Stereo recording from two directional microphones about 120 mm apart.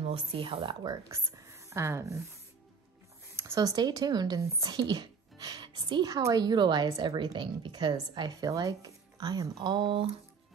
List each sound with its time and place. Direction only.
0.0 s a woman's voice: 50° right (ahead or behind)
1.1 s speech: 25° right (ahead or behind)
3.3 s a sound: 20° right (ahead or behind)
3.6 s speech: 35° right (ahead or behind)